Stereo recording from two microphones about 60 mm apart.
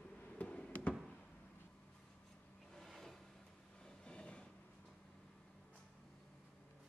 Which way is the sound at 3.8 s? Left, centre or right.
Centre.